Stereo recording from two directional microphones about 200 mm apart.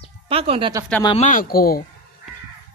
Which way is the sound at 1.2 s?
40° left (ahead or behind).